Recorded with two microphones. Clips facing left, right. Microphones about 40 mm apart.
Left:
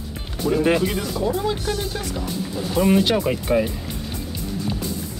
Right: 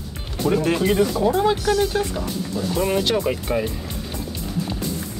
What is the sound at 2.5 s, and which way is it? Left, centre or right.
Speech, centre.